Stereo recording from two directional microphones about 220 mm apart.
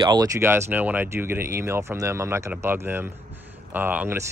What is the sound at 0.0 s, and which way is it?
Speech, 15° right (ahead or behind).